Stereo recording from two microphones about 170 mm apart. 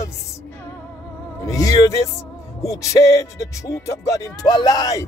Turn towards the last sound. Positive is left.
turn(degrees=20)  # may be behind; listen again after turning